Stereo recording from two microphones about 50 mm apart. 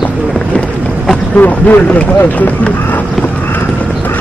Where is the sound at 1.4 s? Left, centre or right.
Left.